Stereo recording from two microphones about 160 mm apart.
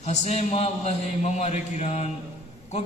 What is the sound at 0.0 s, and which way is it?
A man's voice, 45° left (ahead or behind).